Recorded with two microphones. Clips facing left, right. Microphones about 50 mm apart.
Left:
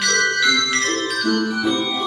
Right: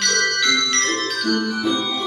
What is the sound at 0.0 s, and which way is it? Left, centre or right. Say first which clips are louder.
Music: left 2 dB; centre.